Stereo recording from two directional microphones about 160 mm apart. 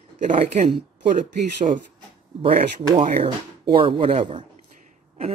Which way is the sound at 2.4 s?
40° right (ahead or behind).